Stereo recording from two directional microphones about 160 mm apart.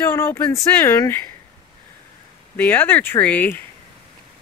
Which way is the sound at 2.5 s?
10° left (ahead or behind).